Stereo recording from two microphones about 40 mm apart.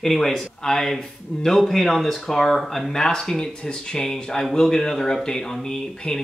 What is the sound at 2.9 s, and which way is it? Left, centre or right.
Speech, centre.